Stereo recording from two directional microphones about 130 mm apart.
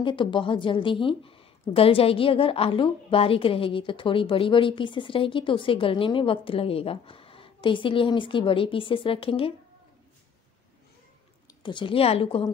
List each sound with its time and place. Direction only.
0.0 s speech: 40° left (ahead or behind)
11.6 s speech: 40° left (ahead or behind)